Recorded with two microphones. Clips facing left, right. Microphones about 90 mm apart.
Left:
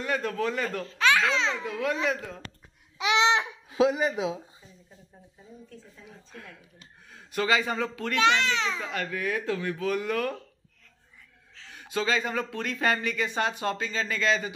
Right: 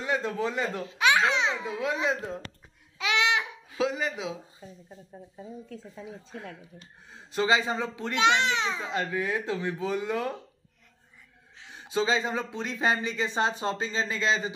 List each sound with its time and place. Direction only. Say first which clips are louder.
0.0 s a child's voice: even; 20° right (ahead or behind)
3.0 s babbling: left 3 dB; 25° left (ahead or behind)
5.4 s speech: right 6 dB; 80° right
6.0 s a child's voice: right 5 dB; 25° right (ahead or behind)
11.5 s a child's voice: right 2 dB; 20° right (ahead or behind)